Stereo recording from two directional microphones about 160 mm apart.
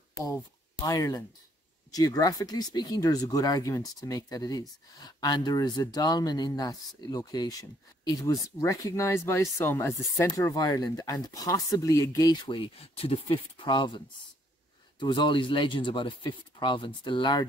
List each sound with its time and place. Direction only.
0.8 s speech: 20° left (ahead or behind)